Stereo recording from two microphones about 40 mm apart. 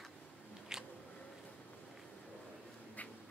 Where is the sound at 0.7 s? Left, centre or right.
Centre.